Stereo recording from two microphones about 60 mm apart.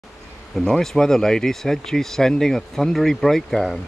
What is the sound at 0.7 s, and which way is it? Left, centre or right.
Speech, centre.